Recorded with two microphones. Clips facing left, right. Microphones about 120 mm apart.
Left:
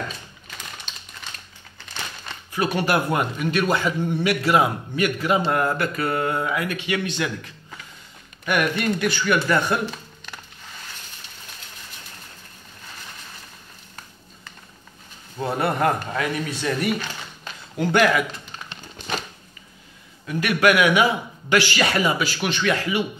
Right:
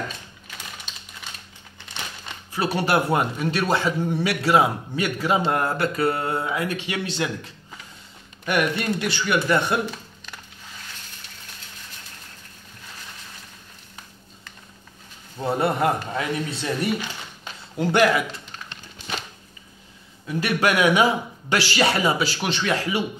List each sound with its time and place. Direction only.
0.9 s typing: 5° right (ahead or behind)
2.5 s a man's voice: 30° right (ahead or behind)
8.5 s speech: 30° right (ahead or behind)
9.2 s speech: 15° right (ahead or behind)
15.4 s speech: 20° right (ahead or behind)
20.2 s a man's voice: 30° right (ahead or behind)